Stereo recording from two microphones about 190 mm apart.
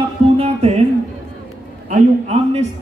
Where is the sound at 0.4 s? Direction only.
35° right (ahead or behind).